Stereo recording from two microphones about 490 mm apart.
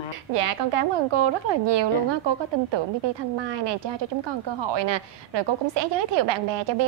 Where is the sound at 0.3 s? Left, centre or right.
Right.